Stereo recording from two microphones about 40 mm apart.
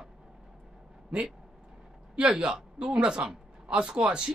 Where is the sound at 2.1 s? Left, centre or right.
Right.